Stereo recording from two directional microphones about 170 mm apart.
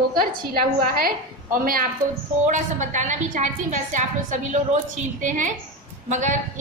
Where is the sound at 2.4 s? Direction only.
45° right (ahead or behind).